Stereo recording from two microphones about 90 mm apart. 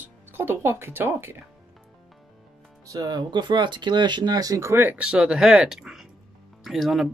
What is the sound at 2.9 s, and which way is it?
Speech, 45° right (ahead or behind).